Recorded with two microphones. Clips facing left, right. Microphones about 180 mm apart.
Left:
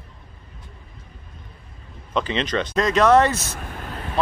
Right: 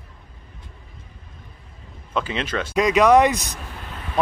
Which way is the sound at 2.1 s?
5° right (ahead or behind).